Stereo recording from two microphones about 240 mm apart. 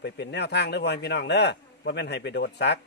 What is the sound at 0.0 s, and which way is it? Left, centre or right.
A man's voice, left.